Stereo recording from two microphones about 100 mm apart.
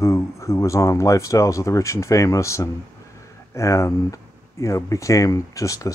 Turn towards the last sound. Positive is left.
turn(degrees=35)  # may be behind; listen again after turning